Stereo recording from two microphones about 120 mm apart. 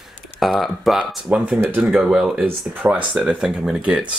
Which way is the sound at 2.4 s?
15° right (ahead or behind).